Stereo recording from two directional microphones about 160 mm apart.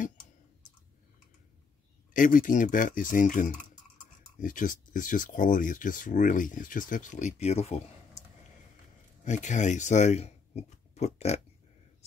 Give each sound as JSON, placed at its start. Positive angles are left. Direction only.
{"t": 2.1, "sound": "speech", "side_deg": 55}
{"t": 9.2, "sound": "speech", "side_deg": 50}